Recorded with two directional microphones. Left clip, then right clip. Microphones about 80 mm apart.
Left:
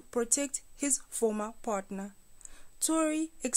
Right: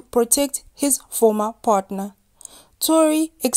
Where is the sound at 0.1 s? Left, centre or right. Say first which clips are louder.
Right 13 dB; right.